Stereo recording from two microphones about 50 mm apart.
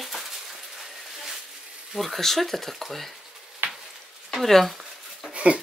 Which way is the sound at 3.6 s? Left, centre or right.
Right.